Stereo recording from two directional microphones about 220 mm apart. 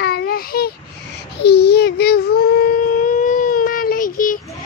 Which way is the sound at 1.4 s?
50° left (ahead or behind).